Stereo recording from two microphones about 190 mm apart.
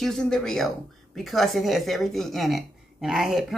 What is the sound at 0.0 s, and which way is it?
Speech, 5° left (ahead or behind).